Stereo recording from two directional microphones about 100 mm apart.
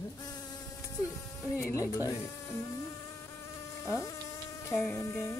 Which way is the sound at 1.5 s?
30° left (ahead or behind).